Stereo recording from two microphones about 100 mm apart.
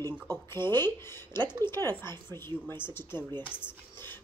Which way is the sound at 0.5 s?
25° left (ahead or behind).